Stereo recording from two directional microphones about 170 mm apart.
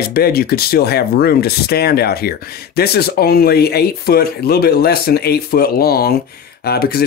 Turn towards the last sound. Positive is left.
turn(degrees=65)  # may be behind; listen again after turning